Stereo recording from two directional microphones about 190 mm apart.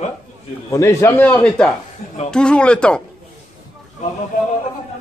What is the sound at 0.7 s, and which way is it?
Speech, 15° left (ahead or behind).